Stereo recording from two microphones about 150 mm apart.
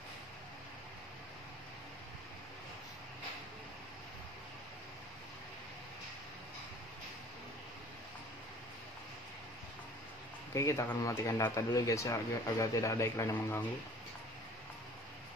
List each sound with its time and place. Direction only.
10.5 s speech: 20° left (ahead or behind)